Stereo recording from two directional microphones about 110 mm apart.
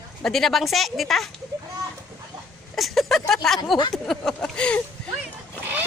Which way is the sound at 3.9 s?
Centre (ahead or behind).